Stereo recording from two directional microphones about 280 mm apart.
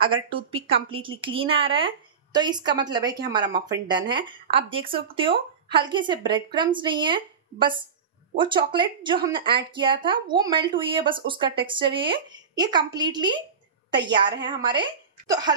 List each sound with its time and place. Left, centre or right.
0.1 s a woman's voice: centre